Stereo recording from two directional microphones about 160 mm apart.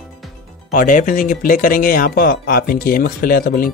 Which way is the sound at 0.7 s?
55° left (ahead or behind).